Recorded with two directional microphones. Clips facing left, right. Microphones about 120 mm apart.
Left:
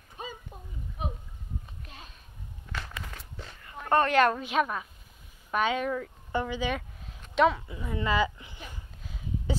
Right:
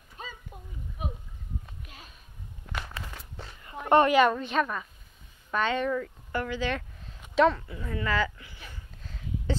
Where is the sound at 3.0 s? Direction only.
30° right (ahead or behind).